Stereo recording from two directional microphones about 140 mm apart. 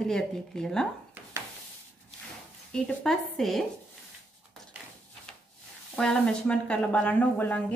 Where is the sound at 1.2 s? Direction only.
15° right (ahead or behind).